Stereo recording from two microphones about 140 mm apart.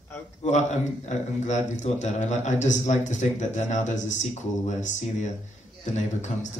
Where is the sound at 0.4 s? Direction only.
55° left (ahead or behind).